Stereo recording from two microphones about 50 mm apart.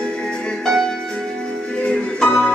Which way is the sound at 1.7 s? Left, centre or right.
Left.